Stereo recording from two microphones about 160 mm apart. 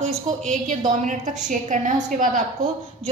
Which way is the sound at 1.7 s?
50° right (ahead or behind).